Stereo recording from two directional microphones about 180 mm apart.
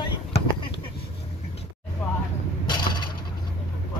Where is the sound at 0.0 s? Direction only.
25° left (ahead or behind).